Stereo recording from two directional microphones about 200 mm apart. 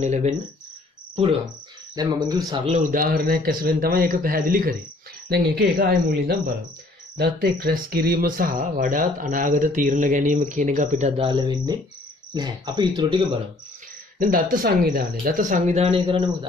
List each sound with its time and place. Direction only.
0.0 s speech: 35° right (ahead or behind)
2.0 s speech: 20° right (ahead or behind)
2.9 s speech: 45° right (ahead or behind); by 13.3 s 25° right (ahead or behind)
14.1 s speech: 45° right (ahead or behind); by 16.3 s 25° right (ahead or behind)